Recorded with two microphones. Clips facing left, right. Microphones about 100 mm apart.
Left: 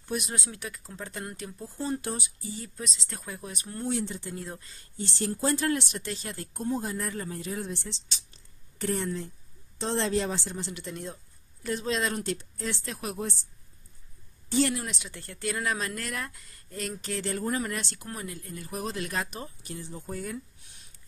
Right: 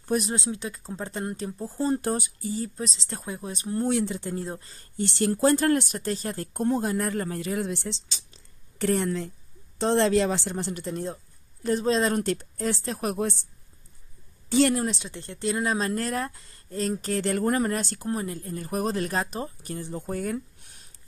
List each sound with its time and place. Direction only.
0.0 s speech: 40° right (ahead or behind)
0.3 s speech: 25° right (ahead or behind); by 2.6 s 45° right (ahead or behind)
2.6 s speech: 35° right (ahead or behind)
3.9 s speech: 80° right
4.4 s speech: 30° right (ahead or behind)
4.9 s speech: 65° right (ahead or behind)
8.7 s speech: 70° right (ahead or behind)
10.7 s speech: 40° right (ahead or behind)
12.2 s speech: 50° right (ahead or behind)
13.1 s speech: 60° right (ahead or behind)
14.7 s speech: 35° right (ahead or behind)
17.3 s speech: 55° right (ahead or behind)
17.6 s speech: 40° right (ahead or behind); by 20.4 s 55° right (ahead or behind)